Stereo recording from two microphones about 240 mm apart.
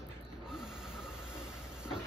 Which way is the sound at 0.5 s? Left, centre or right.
Centre.